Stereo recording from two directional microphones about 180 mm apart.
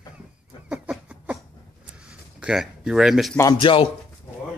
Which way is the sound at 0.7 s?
5° right (ahead or behind).